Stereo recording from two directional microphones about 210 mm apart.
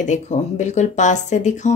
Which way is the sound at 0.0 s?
35° left (ahead or behind).